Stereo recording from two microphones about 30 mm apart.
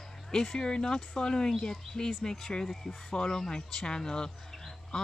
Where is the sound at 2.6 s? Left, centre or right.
Centre.